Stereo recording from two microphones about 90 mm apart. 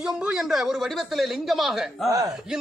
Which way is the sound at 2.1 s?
40° right (ahead or behind).